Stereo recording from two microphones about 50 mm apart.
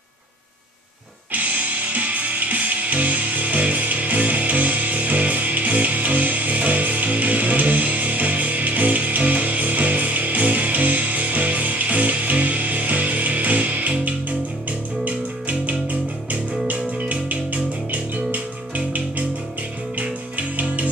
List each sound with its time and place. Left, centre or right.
1.3 s music: right
20.0 s music: right